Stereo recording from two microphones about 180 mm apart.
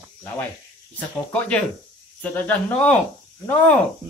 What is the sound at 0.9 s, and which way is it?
Speech, 5° left (ahead or behind).